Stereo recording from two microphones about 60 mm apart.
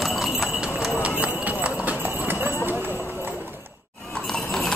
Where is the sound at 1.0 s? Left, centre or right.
Right.